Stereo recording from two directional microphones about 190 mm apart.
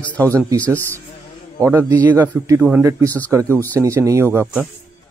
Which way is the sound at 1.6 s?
15° right (ahead or behind).